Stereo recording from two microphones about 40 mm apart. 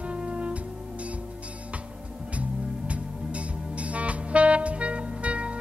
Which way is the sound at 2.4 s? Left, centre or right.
Right.